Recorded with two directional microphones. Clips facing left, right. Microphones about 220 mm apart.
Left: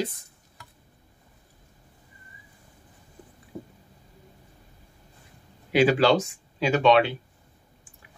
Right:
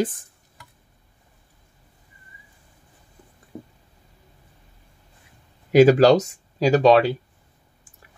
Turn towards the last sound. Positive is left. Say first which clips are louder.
# right 4 dB
turn(degrees=-40)  # may be behind; listen again after turning